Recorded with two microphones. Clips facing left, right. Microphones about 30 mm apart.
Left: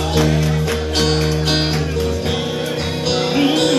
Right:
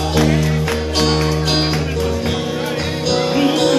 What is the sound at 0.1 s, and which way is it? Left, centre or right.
Music, centre.